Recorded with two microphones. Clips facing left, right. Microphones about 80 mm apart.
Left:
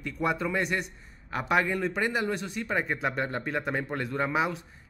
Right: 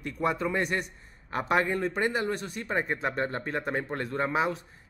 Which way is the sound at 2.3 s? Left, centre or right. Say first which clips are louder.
Left 1 dB; right.